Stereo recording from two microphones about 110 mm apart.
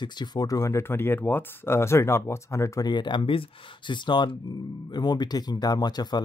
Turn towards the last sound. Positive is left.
turn(degrees=40)  # may be behind; listen again after turning